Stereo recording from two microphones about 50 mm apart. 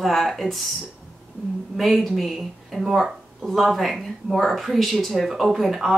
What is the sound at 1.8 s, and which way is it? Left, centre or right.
Speech, centre.